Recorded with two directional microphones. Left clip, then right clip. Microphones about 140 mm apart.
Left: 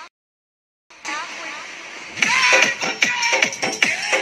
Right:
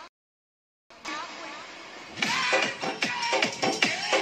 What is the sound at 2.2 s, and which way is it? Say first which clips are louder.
Music: left 10 dB; 25° left (ahead or behind).